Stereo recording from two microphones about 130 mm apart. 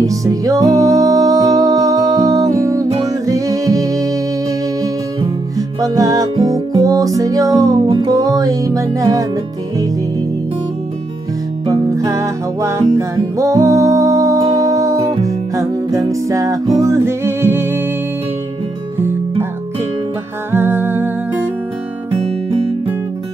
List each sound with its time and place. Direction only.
0.0 s music: 25° right (ahead or behind)
5.8 s music: 25° right (ahead or behind)
11.6 s music: 30° right (ahead or behind)
20.5 s music: 15° right (ahead or behind)
22.1 s music: 45° right (ahead or behind)